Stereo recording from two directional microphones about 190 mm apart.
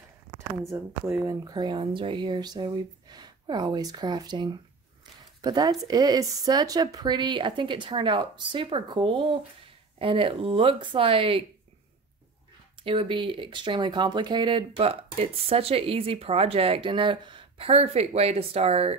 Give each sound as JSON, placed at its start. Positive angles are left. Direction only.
{"t": 0.7, "sound": "speech", "side_deg": -15}
{"t": 12.8, "sound": "speech", "side_deg": -30}